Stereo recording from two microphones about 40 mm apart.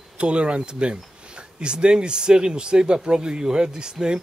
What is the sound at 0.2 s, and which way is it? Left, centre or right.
Speech, right.